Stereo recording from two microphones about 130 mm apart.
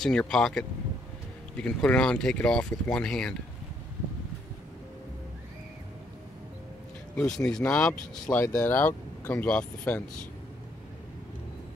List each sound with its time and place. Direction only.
0.0 s speech: 5° left (ahead or behind)
7.2 s speech: 5° left (ahead or behind)